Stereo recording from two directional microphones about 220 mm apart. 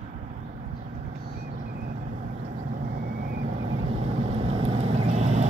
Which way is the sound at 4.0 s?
25° right (ahead or behind).